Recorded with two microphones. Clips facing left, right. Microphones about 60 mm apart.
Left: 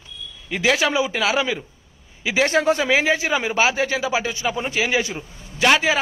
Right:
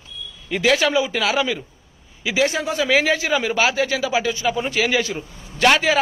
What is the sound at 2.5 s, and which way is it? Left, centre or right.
Speech, left.